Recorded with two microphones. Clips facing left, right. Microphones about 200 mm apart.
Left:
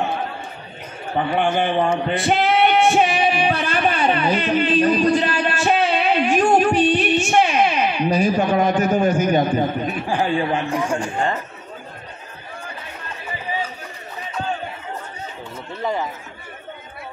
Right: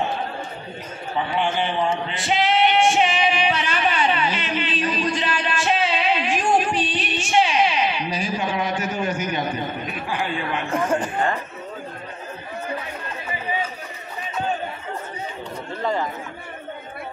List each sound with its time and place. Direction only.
1.1 s a sound: 50° left (ahead or behind)
4.6 s music: 50° left (ahead or behind)
7.2 s speech: 50° left (ahead or behind)
10.9 s a man's voice: 5° right (ahead or behind)